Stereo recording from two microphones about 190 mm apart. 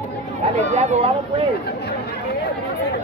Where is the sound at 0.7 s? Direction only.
35° right (ahead or behind).